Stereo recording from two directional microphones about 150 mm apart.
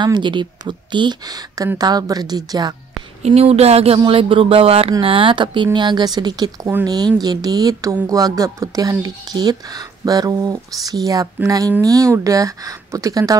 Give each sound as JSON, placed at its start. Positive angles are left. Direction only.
{"t": 0.0, "sound": "speech", "side_deg": -30}
{"t": 3.2, "sound": "speech", "side_deg": -45}